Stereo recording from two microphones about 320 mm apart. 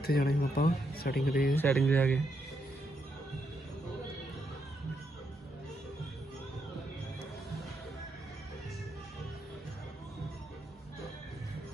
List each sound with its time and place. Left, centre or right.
0.0 s speech: left
1.5 s speech: centre